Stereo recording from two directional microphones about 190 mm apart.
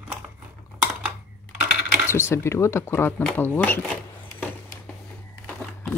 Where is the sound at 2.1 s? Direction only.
15° left (ahead or behind).